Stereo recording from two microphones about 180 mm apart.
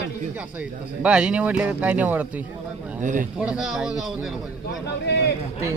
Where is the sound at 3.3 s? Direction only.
5° right (ahead or behind).